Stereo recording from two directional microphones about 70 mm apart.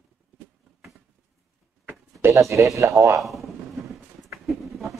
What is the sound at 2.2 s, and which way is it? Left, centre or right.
Speech, right.